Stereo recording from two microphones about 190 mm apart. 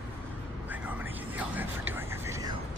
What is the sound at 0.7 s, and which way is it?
Music, 10° right (ahead or behind).